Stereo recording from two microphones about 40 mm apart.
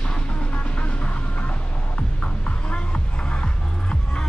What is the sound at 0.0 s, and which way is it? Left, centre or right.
Music, left.